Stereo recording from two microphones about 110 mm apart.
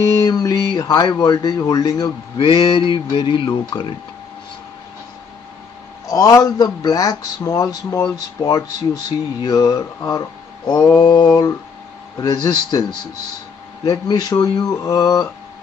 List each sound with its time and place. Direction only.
0.0 s a sound: 35° left (ahead or behind)
1.1 s speech: 35° left (ahead or behind)
2.3 s speech: 50° left (ahead or behind)
6.0 s speech: 35° left (ahead or behind)
13.8 s speech: 35° left (ahead or behind)